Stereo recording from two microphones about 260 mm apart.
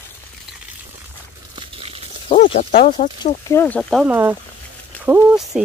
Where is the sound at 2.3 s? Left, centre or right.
Left.